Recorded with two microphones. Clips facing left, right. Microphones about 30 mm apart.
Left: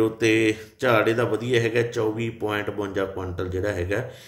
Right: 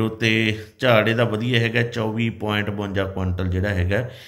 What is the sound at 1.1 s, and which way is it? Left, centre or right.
Speech, right.